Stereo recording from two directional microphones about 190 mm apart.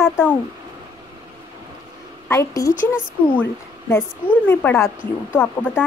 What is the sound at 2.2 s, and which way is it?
Speech, 15° left (ahead or behind).